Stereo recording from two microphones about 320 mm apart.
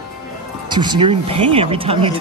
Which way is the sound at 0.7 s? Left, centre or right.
Centre.